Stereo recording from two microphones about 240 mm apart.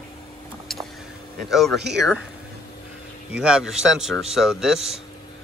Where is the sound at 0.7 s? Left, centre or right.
Centre.